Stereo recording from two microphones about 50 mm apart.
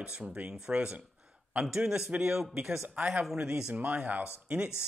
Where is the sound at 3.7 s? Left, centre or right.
Right.